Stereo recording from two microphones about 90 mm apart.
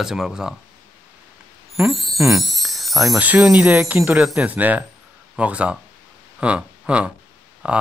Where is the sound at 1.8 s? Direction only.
Centre (ahead or behind).